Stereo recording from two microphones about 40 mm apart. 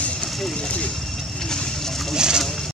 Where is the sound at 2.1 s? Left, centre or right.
Centre.